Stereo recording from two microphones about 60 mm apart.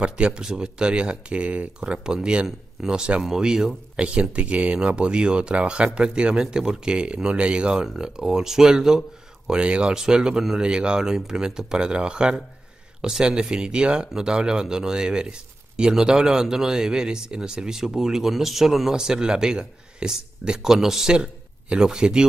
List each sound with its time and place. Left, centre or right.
0.0 s speech: centre